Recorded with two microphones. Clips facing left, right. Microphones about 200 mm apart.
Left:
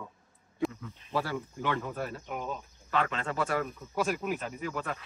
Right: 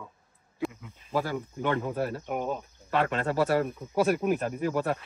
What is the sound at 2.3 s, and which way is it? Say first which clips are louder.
Speech: right 6 dB; 50° right (ahead or behind).